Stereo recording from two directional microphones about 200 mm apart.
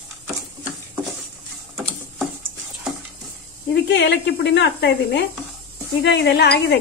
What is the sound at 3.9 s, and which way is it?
Speech, 60° left (ahead or behind).